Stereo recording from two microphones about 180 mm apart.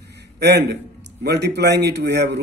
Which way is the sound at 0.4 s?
70° right (ahead or behind).